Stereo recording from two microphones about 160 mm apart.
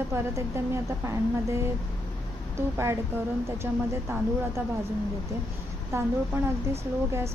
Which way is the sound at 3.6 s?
15° right (ahead or behind).